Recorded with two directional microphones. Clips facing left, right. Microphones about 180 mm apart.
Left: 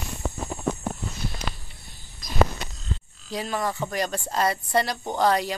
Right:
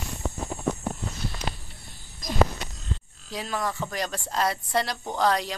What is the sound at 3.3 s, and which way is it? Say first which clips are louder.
Speech: left 2 dB; centre (ahead or behind).